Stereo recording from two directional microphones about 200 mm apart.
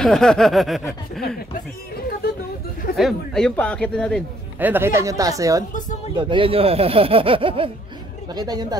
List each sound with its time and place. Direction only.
0.0 s a man's voice: centre (ahead or behind)
3.0 s a man's voice: centre (ahead or behind)
4.6 s speech: 10° right (ahead or behind)
5.7 s speech: 40° left (ahead or behind)
6.1 s speech: 25° right (ahead or behind)